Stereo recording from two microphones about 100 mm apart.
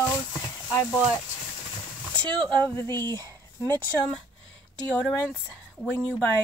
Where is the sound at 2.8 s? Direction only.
25° left (ahead or behind).